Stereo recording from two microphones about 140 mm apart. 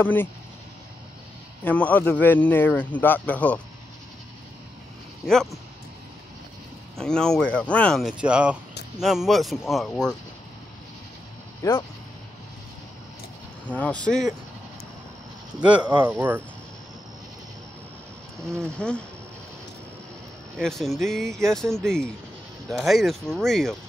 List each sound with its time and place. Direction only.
0.0 s a man's voice: 15° left (ahead or behind)
1.6 s a man's voice: 10° left (ahead or behind)
5.2 s speech: centre (ahead or behind)
7.0 s speech: 5° left (ahead or behind)
8.2 s speech: 10° right (ahead or behind)
11.6 s speech: 25° left (ahead or behind)
13.7 s a man's voice: 10° left (ahead or behind)
15.6 s speech: 10° right (ahead or behind)
18.6 s a man's voice: 5° left (ahead or behind)
20.5 s speech: centre (ahead or behind)